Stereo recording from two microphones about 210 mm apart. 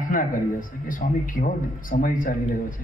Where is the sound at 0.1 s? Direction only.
40° left (ahead or behind).